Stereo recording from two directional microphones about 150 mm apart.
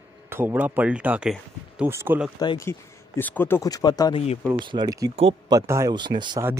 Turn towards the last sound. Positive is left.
turn(degrees=-30)  # may be behind; listen again after turning